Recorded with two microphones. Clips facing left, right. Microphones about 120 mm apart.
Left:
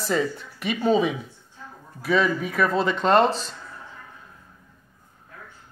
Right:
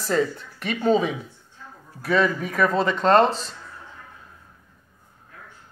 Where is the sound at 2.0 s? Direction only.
5° left (ahead or behind).